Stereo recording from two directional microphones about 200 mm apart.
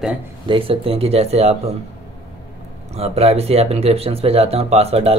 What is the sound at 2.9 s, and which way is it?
Speech, 30° right (ahead or behind).